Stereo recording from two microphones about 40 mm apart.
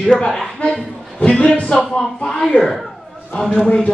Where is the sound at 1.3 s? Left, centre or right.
Centre.